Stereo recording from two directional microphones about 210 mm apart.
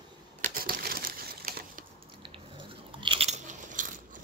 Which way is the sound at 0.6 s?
45° right (ahead or behind).